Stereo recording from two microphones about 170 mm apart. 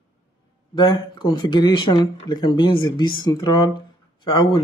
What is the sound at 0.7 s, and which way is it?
A man's voice, 25° left (ahead or behind).